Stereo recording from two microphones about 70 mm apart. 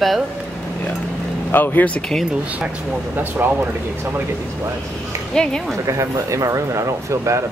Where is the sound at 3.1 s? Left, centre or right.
Right.